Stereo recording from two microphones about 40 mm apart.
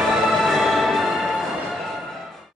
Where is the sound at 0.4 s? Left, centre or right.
Centre.